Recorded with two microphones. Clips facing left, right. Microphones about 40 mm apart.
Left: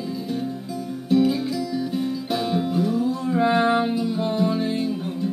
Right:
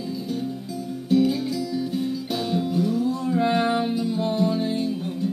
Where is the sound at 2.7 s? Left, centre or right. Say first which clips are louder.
Left 1 dB; centre.